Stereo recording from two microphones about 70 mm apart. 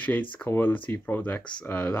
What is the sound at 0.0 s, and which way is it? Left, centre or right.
Speech, left.